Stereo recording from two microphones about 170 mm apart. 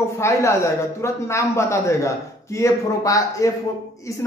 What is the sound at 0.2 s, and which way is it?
A man's voice, 15° left (ahead or behind).